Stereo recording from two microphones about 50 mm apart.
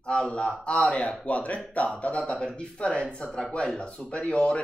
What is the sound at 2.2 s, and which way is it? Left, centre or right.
Speech, centre.